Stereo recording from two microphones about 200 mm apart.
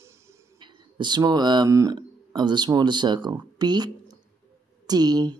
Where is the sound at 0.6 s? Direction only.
25° right (ahead or behind).